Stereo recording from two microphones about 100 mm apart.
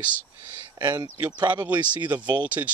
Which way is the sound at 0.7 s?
45° right (ahead or behind).